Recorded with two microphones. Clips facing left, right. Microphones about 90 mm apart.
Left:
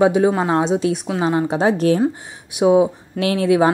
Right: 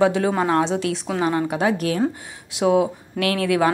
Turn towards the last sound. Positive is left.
turn(degrees=20)  # may be behind; listen again after turning